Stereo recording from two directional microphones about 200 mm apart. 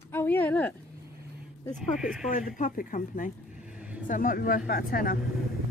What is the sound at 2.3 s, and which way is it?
Speech, 40° left (ahead or behind).